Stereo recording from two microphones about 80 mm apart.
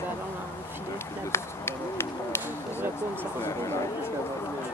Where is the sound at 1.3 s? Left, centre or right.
Left.